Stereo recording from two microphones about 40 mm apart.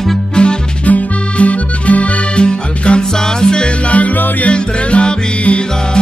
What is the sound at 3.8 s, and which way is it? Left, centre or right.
Music, left.